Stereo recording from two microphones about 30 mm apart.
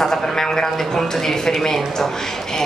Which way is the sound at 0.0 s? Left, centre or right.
Centre.